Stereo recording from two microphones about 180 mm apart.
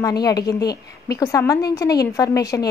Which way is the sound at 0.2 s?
20° left (ahead or behind).